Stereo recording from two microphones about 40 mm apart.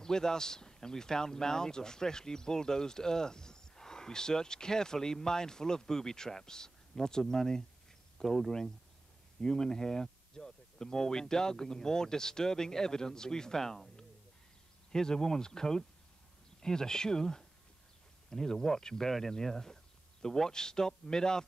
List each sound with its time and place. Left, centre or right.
0.0 s speech: centre